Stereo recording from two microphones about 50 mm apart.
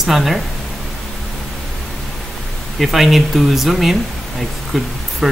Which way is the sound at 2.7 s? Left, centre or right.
Centre.